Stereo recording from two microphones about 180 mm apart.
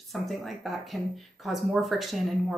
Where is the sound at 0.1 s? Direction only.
Centre (ahead or behind).